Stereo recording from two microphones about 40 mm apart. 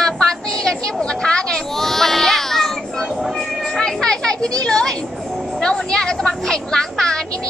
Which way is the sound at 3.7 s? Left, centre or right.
Centre.